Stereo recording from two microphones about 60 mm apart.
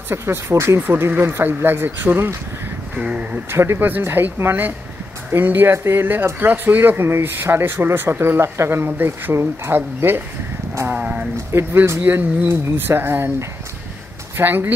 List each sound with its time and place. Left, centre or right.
0.1 s speech: right
3.0 s speech: right
3.4 s speech: right
3.8 s speech: right
10.9 s speech: right
11.5 s speech: right
14.3 s speech: right